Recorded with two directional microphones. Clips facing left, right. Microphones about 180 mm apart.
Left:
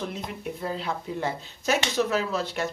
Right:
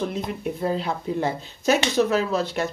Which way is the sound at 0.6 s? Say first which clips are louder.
Right 5 dB; 35° right (ahead or behind).